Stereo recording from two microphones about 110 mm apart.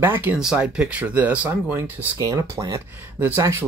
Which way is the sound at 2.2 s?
30° right (ahead or behind).